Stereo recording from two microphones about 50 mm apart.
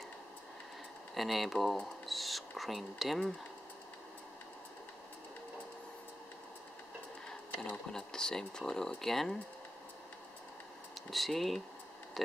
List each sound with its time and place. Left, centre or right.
1.1 s speech: centre
7.9 s speech: centre
11.0 s speech: centre